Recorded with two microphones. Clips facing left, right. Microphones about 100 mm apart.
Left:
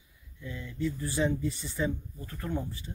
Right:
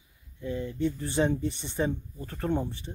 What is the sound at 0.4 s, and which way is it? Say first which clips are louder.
Speech: right 5 dB; 35° right (ahead or behind).